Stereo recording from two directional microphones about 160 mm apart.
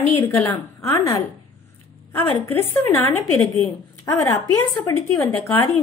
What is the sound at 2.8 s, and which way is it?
A woman's voice, 15° left (ahead or behind).